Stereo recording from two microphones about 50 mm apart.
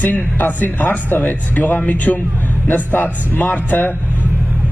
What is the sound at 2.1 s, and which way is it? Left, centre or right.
Speech, centre.